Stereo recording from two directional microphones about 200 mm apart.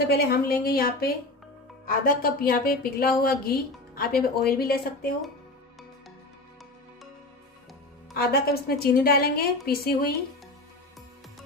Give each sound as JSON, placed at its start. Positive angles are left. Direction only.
{"t": 0.1, "sound": "a woman's voice", "side_deg": 50}
{"t": 8.1, "sound": "a woman's voice", "side_deg": 50}